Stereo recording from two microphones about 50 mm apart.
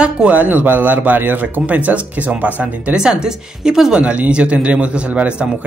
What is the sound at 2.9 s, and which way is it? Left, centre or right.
Speech, centre.